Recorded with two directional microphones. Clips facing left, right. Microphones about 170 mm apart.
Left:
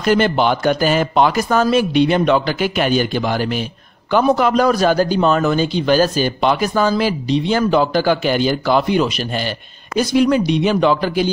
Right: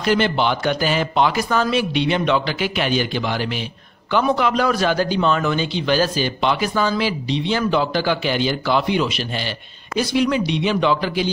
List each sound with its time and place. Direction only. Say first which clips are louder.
0.0 s a man's voice: left 3 dB; 45° left (ahead or behind)